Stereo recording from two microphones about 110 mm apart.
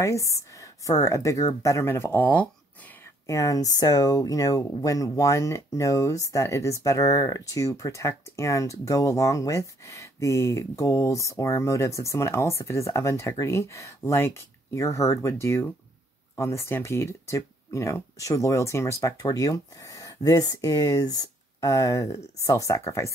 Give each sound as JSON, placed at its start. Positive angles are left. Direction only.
{"t": 0.0, "sound": "speech", "side_deg": 30}
{"t": 3.3, "sound": "speech", "side_deg": 30}